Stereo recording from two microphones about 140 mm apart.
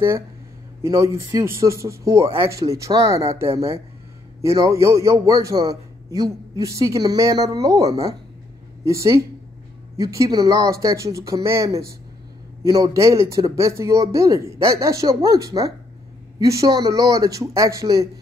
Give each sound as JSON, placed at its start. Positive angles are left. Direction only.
{"t": 0.8, "sound": "a man's voice", "side_deg": -25}